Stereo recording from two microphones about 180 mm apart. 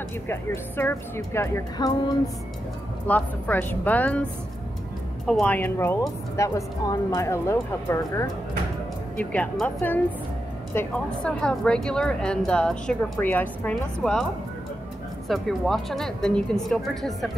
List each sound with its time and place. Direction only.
0.3 s a woman's voice: 10° left (ahead or behind)
3.1 s a woman's voice: 10° left (ahead or behind)
15.2 s a woman's voice: centre (ahead or behind)